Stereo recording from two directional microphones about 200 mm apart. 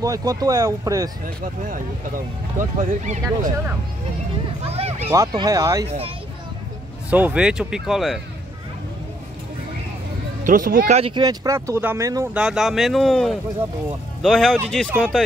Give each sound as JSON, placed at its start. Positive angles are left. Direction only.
{"t": 0.0, "sound": "speech", "side_deg": -15}
{"t": 1.2, "sound": "speech", "side_deg": -45}
{"t": 4.6, "sound": "a sound", "side_deg": -30}
{"t": 5.1, "sound": "speech", "side_deg": -20}
{"t": 5.9, "sound": "speech", "side_deg": -30}
{"t": 7.1, "sound": "speech", "side_deg": -10}
{"t": 10.4, "sound": "speech", "side_deg": -40}
{"t": 11.0, "sound": "speech", "side_deg": -25}
{"t": 12.4, "sound": "speech", "side_deg": 0}